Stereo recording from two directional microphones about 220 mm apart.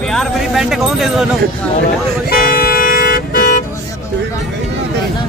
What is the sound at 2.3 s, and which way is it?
Vehicle, 40° left (ahead or behind).